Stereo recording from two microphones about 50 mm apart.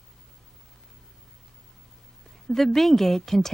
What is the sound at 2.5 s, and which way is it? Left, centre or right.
A woman's voice, centre.